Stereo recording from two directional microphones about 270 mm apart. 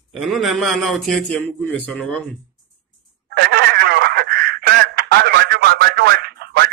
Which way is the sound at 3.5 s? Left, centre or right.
Right.